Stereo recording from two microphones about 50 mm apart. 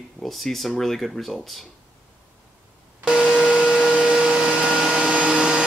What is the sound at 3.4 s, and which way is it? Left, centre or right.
Vacuum cleaner, centre.